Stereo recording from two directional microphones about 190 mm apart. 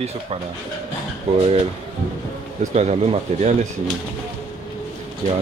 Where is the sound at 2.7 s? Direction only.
35° right (ahead or behind).